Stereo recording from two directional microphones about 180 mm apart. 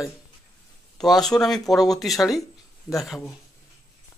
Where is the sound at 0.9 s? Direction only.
Centre (ahead or behind).